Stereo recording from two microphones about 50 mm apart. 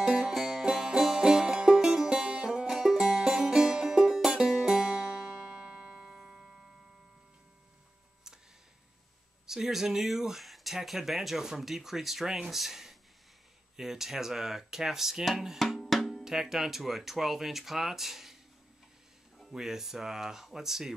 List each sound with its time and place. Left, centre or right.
0.0 s music: centre
9.5 s speech: centre
15.8 s drum: centre
16.3 s speech: centre
19.5 s speech: centre